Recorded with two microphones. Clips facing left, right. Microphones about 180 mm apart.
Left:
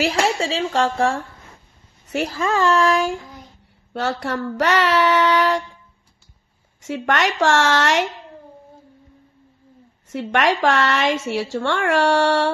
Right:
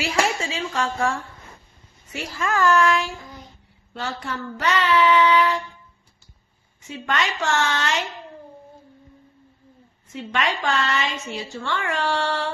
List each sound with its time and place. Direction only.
0.1 s speech: 30° left (ahead or behind)
2.2 s speech: 30° left (ahead or behind)
4.2 s a woman's voice: 70° left (ahead or behind)
6.9 s a woman's voice: 75° left (ahead or behind)
10.1 s a woman's voice: 85° left